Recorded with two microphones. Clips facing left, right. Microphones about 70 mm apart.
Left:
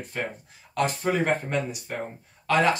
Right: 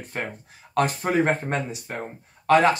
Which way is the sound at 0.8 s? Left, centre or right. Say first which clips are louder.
Right 3 dB; right.